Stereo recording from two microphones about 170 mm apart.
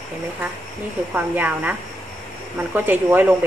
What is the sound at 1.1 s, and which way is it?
A woman's voice, 10° right (ahead or behind).